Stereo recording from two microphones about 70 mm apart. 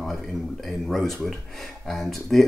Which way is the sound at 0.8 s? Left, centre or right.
Centre.